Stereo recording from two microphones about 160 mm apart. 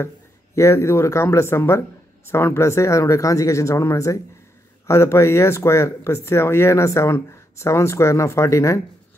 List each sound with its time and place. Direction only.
0.6 s speech: 15° left (ahead or behind)